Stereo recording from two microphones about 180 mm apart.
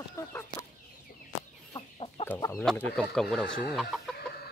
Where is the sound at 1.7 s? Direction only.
30° left (ahead or behind).